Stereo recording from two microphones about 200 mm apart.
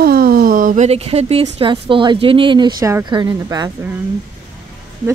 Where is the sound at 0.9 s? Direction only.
30° right (ahead or behind).